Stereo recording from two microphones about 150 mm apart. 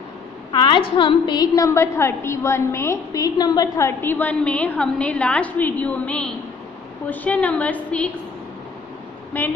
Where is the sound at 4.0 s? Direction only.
10° left (ahead or behind).